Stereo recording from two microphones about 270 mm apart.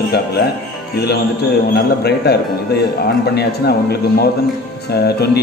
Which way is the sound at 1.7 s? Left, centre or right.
Left.